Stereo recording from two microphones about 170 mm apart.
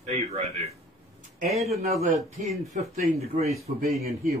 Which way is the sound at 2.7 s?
50° right (ahead or behind).